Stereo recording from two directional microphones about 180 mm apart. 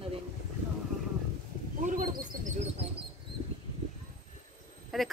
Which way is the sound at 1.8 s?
45° right (ahead or behind).